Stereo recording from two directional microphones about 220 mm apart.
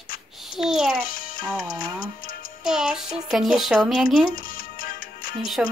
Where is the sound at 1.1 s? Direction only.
40° left (ahead or behind).